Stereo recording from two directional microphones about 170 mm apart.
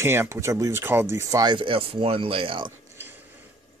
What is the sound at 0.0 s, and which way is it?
Speech, 15° right (ahead or behind).